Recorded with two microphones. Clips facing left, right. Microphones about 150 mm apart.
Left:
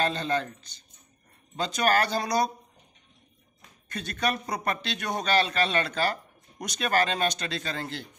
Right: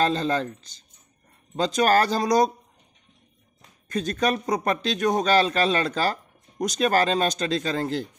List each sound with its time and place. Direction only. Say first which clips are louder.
0.0 s speech: right 4 dB; 40° right (ahead or behind)
1.6 s speech: right 5 dB; 40° right (ahead or behind)
3.9 s speech: right 5 dB; 40° right (ahead or behind)